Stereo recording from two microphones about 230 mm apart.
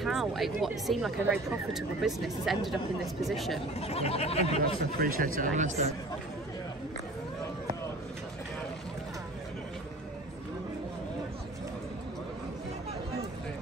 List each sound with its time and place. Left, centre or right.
0.0 s speech: centre
3.8 s a sound: left
5.0 s speech: right